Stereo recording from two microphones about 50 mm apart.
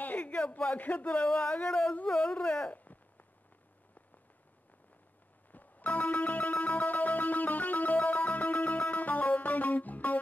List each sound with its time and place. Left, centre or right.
0.0 s speech: left
5.5 s music: left